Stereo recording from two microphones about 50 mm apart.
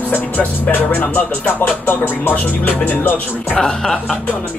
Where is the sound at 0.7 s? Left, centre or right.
Left.